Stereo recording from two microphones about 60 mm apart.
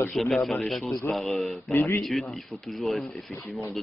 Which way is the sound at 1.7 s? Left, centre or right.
Left.